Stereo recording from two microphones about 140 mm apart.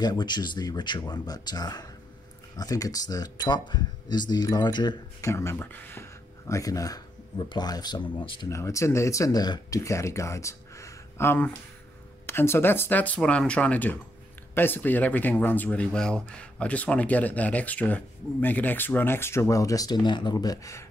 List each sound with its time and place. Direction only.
0.0 s speech: 30° left (ahead or behind)
5.3 s speech: 20° left (ahead or behind)
8.5 s speech: 20° left (ahead or behind)